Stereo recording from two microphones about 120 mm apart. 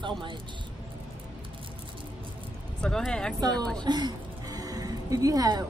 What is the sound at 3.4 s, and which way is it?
Speech, 35° right (ahead or behind).